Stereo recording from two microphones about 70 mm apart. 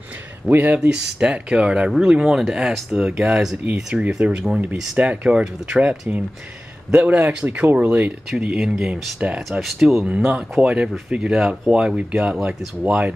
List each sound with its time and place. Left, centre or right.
0.5 s speech: right
0.7 s speech: centre
9.5 s speech: centre
10.0 s speech: centre
11.7 s speech: centre